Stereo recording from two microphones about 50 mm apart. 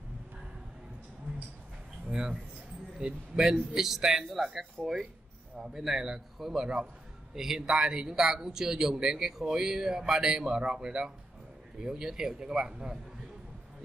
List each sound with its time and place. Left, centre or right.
2.0 s speech: centre